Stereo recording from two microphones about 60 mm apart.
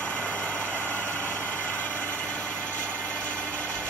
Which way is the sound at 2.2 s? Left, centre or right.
Centre.